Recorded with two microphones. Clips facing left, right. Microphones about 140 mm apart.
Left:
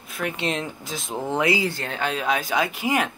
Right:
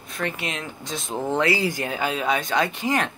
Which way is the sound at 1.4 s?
10° left (ahead or behind).